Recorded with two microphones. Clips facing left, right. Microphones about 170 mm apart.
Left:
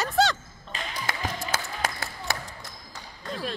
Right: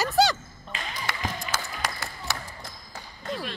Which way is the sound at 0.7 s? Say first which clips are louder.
Left 1 dB; 50° left (ahead or behind).